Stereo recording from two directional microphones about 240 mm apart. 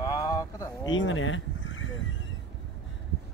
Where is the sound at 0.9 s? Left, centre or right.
Left.